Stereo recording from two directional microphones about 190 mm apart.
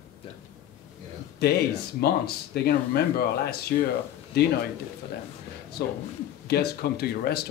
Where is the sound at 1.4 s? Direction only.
60° left (ahead or behind).